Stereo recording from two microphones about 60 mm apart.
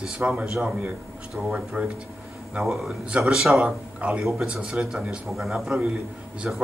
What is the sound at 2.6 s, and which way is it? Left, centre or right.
Speech, centre.